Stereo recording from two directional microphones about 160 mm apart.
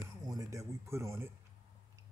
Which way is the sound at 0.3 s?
20° right (ahead or behind).